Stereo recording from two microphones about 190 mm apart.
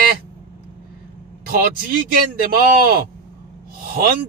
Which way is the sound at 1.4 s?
50° right (ahead or behind).